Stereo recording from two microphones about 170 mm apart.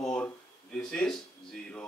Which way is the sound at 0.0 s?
5° left (ahead or behind).